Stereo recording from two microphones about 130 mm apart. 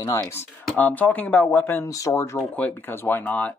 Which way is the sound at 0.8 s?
15° left (ahead or behind).